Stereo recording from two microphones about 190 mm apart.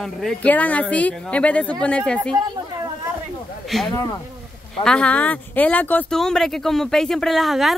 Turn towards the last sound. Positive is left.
turn(degrees=0)  # may be behind; listen again after turning